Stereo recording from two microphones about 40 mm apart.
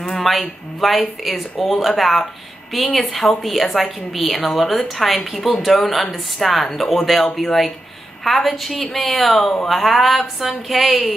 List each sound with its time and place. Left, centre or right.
0.0 s a woman's voice: centre